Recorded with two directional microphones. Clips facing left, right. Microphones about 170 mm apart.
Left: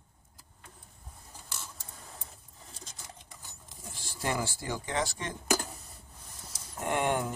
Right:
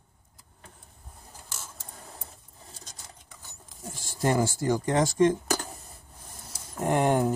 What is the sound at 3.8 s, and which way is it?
Speech, 45° right (ahead or behind).